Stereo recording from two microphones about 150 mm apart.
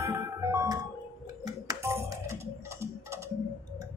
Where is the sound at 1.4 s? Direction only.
25° right (ahead or behind).